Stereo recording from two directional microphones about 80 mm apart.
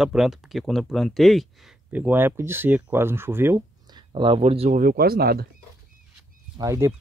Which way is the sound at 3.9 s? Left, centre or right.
Right.